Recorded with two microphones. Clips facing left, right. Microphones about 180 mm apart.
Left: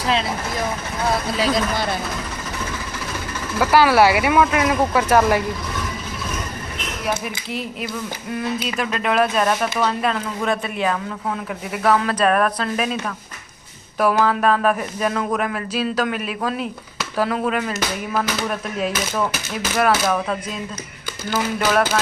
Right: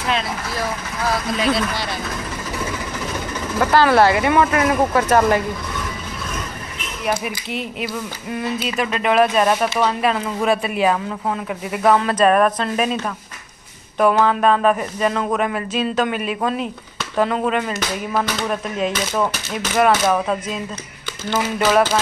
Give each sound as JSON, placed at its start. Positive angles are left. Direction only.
{"t": 0.6, "sound": "speech", "side_deg": 25}
{"t": 3.5, "sound": "speech", "side_deg": 5}
{"t": 8.4, "sound": "speech", "side_deg": 0}
{"t": 13.9, "sound": "speech", "side_deg": 5}
{"t": 19.9, "sound": "speech", "side_deg": -5}